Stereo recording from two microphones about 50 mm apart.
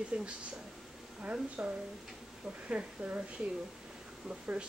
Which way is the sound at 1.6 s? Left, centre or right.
Right.